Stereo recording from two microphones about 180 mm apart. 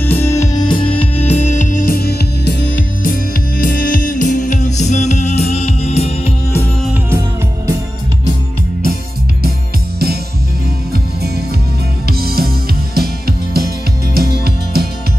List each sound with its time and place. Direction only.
0.0 s music: 10° left (ahead or behind); by 2.5 s 60° left (ahead or behind)
3.0 s music: 50° left (ahead or behind)
12.1 s music: 60° right (ahead or behind)